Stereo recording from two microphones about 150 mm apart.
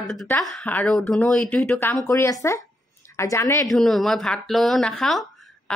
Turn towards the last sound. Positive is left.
turn(degrees=0)  # may be behind; listen again after turning